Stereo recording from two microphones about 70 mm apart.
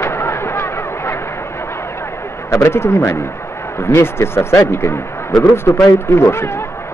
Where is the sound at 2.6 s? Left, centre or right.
Left.